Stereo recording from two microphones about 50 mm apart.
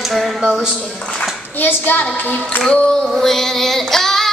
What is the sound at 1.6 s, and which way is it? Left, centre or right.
Singing, left.